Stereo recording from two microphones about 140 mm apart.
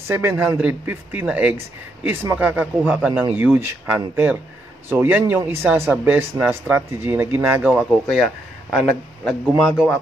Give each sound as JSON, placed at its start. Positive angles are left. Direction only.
{"t": 0.1, "sound": "speech", "side_deg": -15}
{"t": 7.7, "sound": "speech", "side_deg": 5}